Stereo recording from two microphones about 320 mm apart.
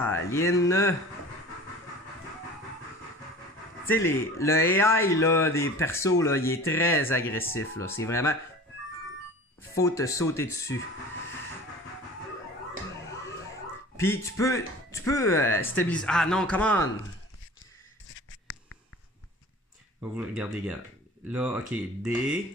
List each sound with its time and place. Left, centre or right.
0.0 s speech: centre
3.8 s speech: centre
9.8 s speech: centre
13.9 s speech: centre
18.0 s writing: left
20.0 s speech: centre